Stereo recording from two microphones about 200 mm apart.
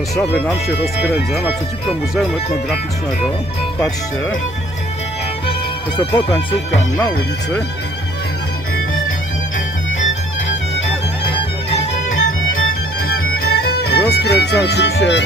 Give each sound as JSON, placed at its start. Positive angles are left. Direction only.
{"t": 5.5, "sound": "music", "side_deg": 25}
{"t": 13.0, "sound": "music", "side_deg": 50}